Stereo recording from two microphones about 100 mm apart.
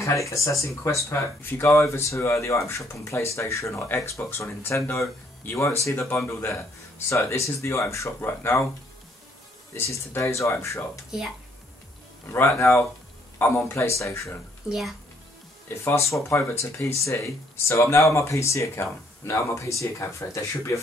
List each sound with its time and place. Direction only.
0.0 s speech: 30° left (ahead or behind)
9.8 s speech: 25° left (ahead or behind)
12.3 s speech: 25° left (ahead or behind)
14.7 s a child's voice: centre (ahead or behind)
15.8 s speech: 30° left (ahead or behind)